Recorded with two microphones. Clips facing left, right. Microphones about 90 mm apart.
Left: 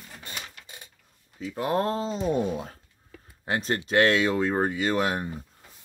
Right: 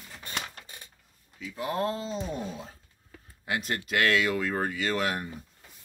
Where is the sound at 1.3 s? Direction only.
45° left (ahead or behind).